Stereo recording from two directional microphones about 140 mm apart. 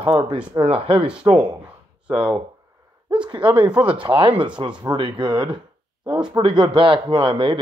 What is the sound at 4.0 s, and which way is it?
Speech, 40° right (ahead or behind).